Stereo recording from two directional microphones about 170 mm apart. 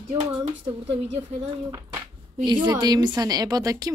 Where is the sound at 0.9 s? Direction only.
35° right (ahead or behind).